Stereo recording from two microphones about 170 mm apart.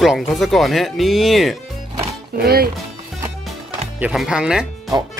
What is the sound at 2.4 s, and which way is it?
Speech, 65° right (ahead or behind).